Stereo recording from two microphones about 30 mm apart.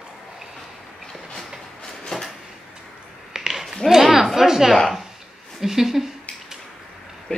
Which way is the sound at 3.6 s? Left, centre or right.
Centre.